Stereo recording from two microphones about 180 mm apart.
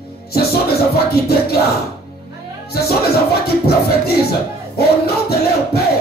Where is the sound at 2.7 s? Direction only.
60° left (ahead or behind).